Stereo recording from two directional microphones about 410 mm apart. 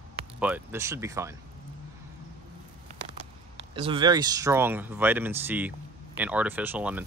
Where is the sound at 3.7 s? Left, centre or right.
Centre.